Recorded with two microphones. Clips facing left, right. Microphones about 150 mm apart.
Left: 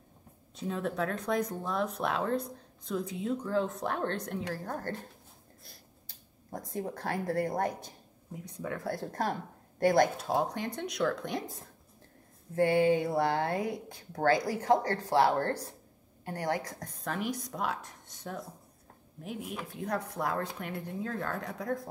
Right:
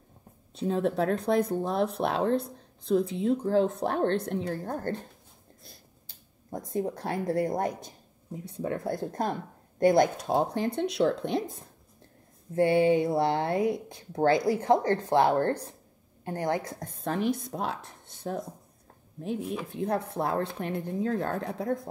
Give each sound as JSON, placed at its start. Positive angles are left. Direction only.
{"t": 0.6, "sound": "speech", "side_deg": -30}
{"t": 6.7, "sound": "speech", "side_deg": -20}
{"t": 12.5, "sound": "speech", "side_deg": -20}
{"t": 19.7, "sound": "speech", "side_deg": -30}